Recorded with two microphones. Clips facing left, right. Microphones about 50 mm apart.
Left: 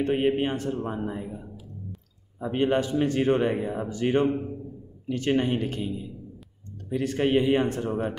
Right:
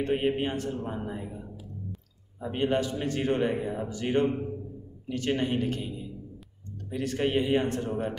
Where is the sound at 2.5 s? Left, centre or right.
Left.